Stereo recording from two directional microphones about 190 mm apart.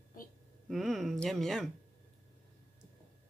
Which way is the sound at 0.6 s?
Centre (ahead or behind).